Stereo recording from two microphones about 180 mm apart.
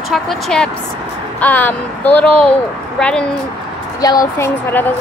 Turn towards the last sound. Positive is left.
turn(degrees=10)  # may be behind; listen again after turning